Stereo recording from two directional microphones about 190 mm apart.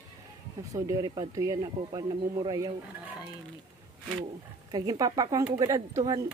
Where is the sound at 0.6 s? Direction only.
15° right (ahead or behind).